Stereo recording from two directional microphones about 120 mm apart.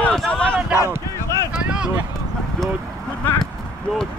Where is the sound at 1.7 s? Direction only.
5° right (ahead or behind).